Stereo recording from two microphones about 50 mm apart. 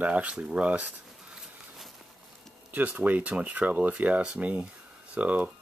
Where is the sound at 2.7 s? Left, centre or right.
Right.